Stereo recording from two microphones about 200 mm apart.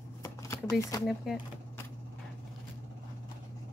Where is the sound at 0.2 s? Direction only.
15° left (ahead or behind).